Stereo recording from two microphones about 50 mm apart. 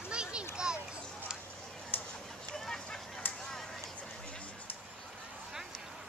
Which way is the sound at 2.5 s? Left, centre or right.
Centre.